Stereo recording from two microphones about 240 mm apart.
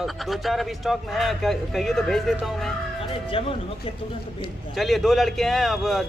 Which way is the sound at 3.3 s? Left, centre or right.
Left.